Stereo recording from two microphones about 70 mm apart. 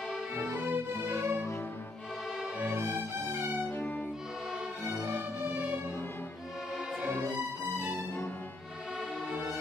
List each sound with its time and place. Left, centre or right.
0.5 s music: right
3.3 s music: right
5.0 s music: right